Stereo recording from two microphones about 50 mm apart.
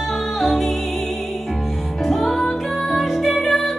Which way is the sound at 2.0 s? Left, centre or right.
Centre.